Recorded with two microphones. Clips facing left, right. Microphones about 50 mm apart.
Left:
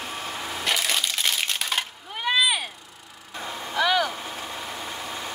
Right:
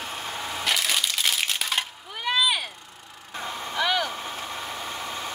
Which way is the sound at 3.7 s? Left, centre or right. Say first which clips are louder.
Left 3 dB; centre.